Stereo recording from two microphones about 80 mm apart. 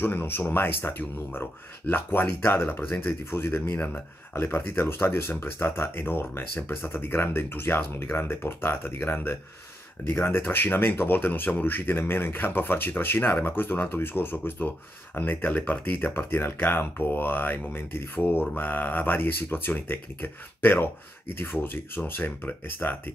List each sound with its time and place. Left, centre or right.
0.0 s speech: left